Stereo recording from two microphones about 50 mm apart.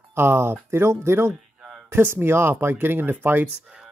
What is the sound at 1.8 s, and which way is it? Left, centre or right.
Speech, right.